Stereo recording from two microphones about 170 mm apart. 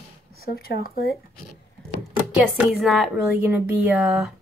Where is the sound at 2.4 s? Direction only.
Centre (ahead or behind).